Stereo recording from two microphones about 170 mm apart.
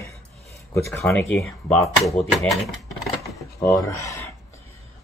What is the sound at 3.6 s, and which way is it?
Speech, 15° left (ahead or behind).